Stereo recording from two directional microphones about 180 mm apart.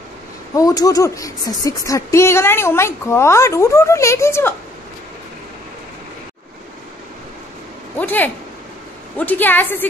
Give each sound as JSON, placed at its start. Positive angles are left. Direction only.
{"t": 0.6, "sound": "speech", "side_deg": 20}
{"t": 8.0, "sound": "speech", "side_deg": 10}